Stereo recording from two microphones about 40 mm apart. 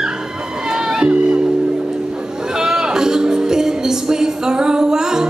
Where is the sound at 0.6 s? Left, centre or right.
Centre.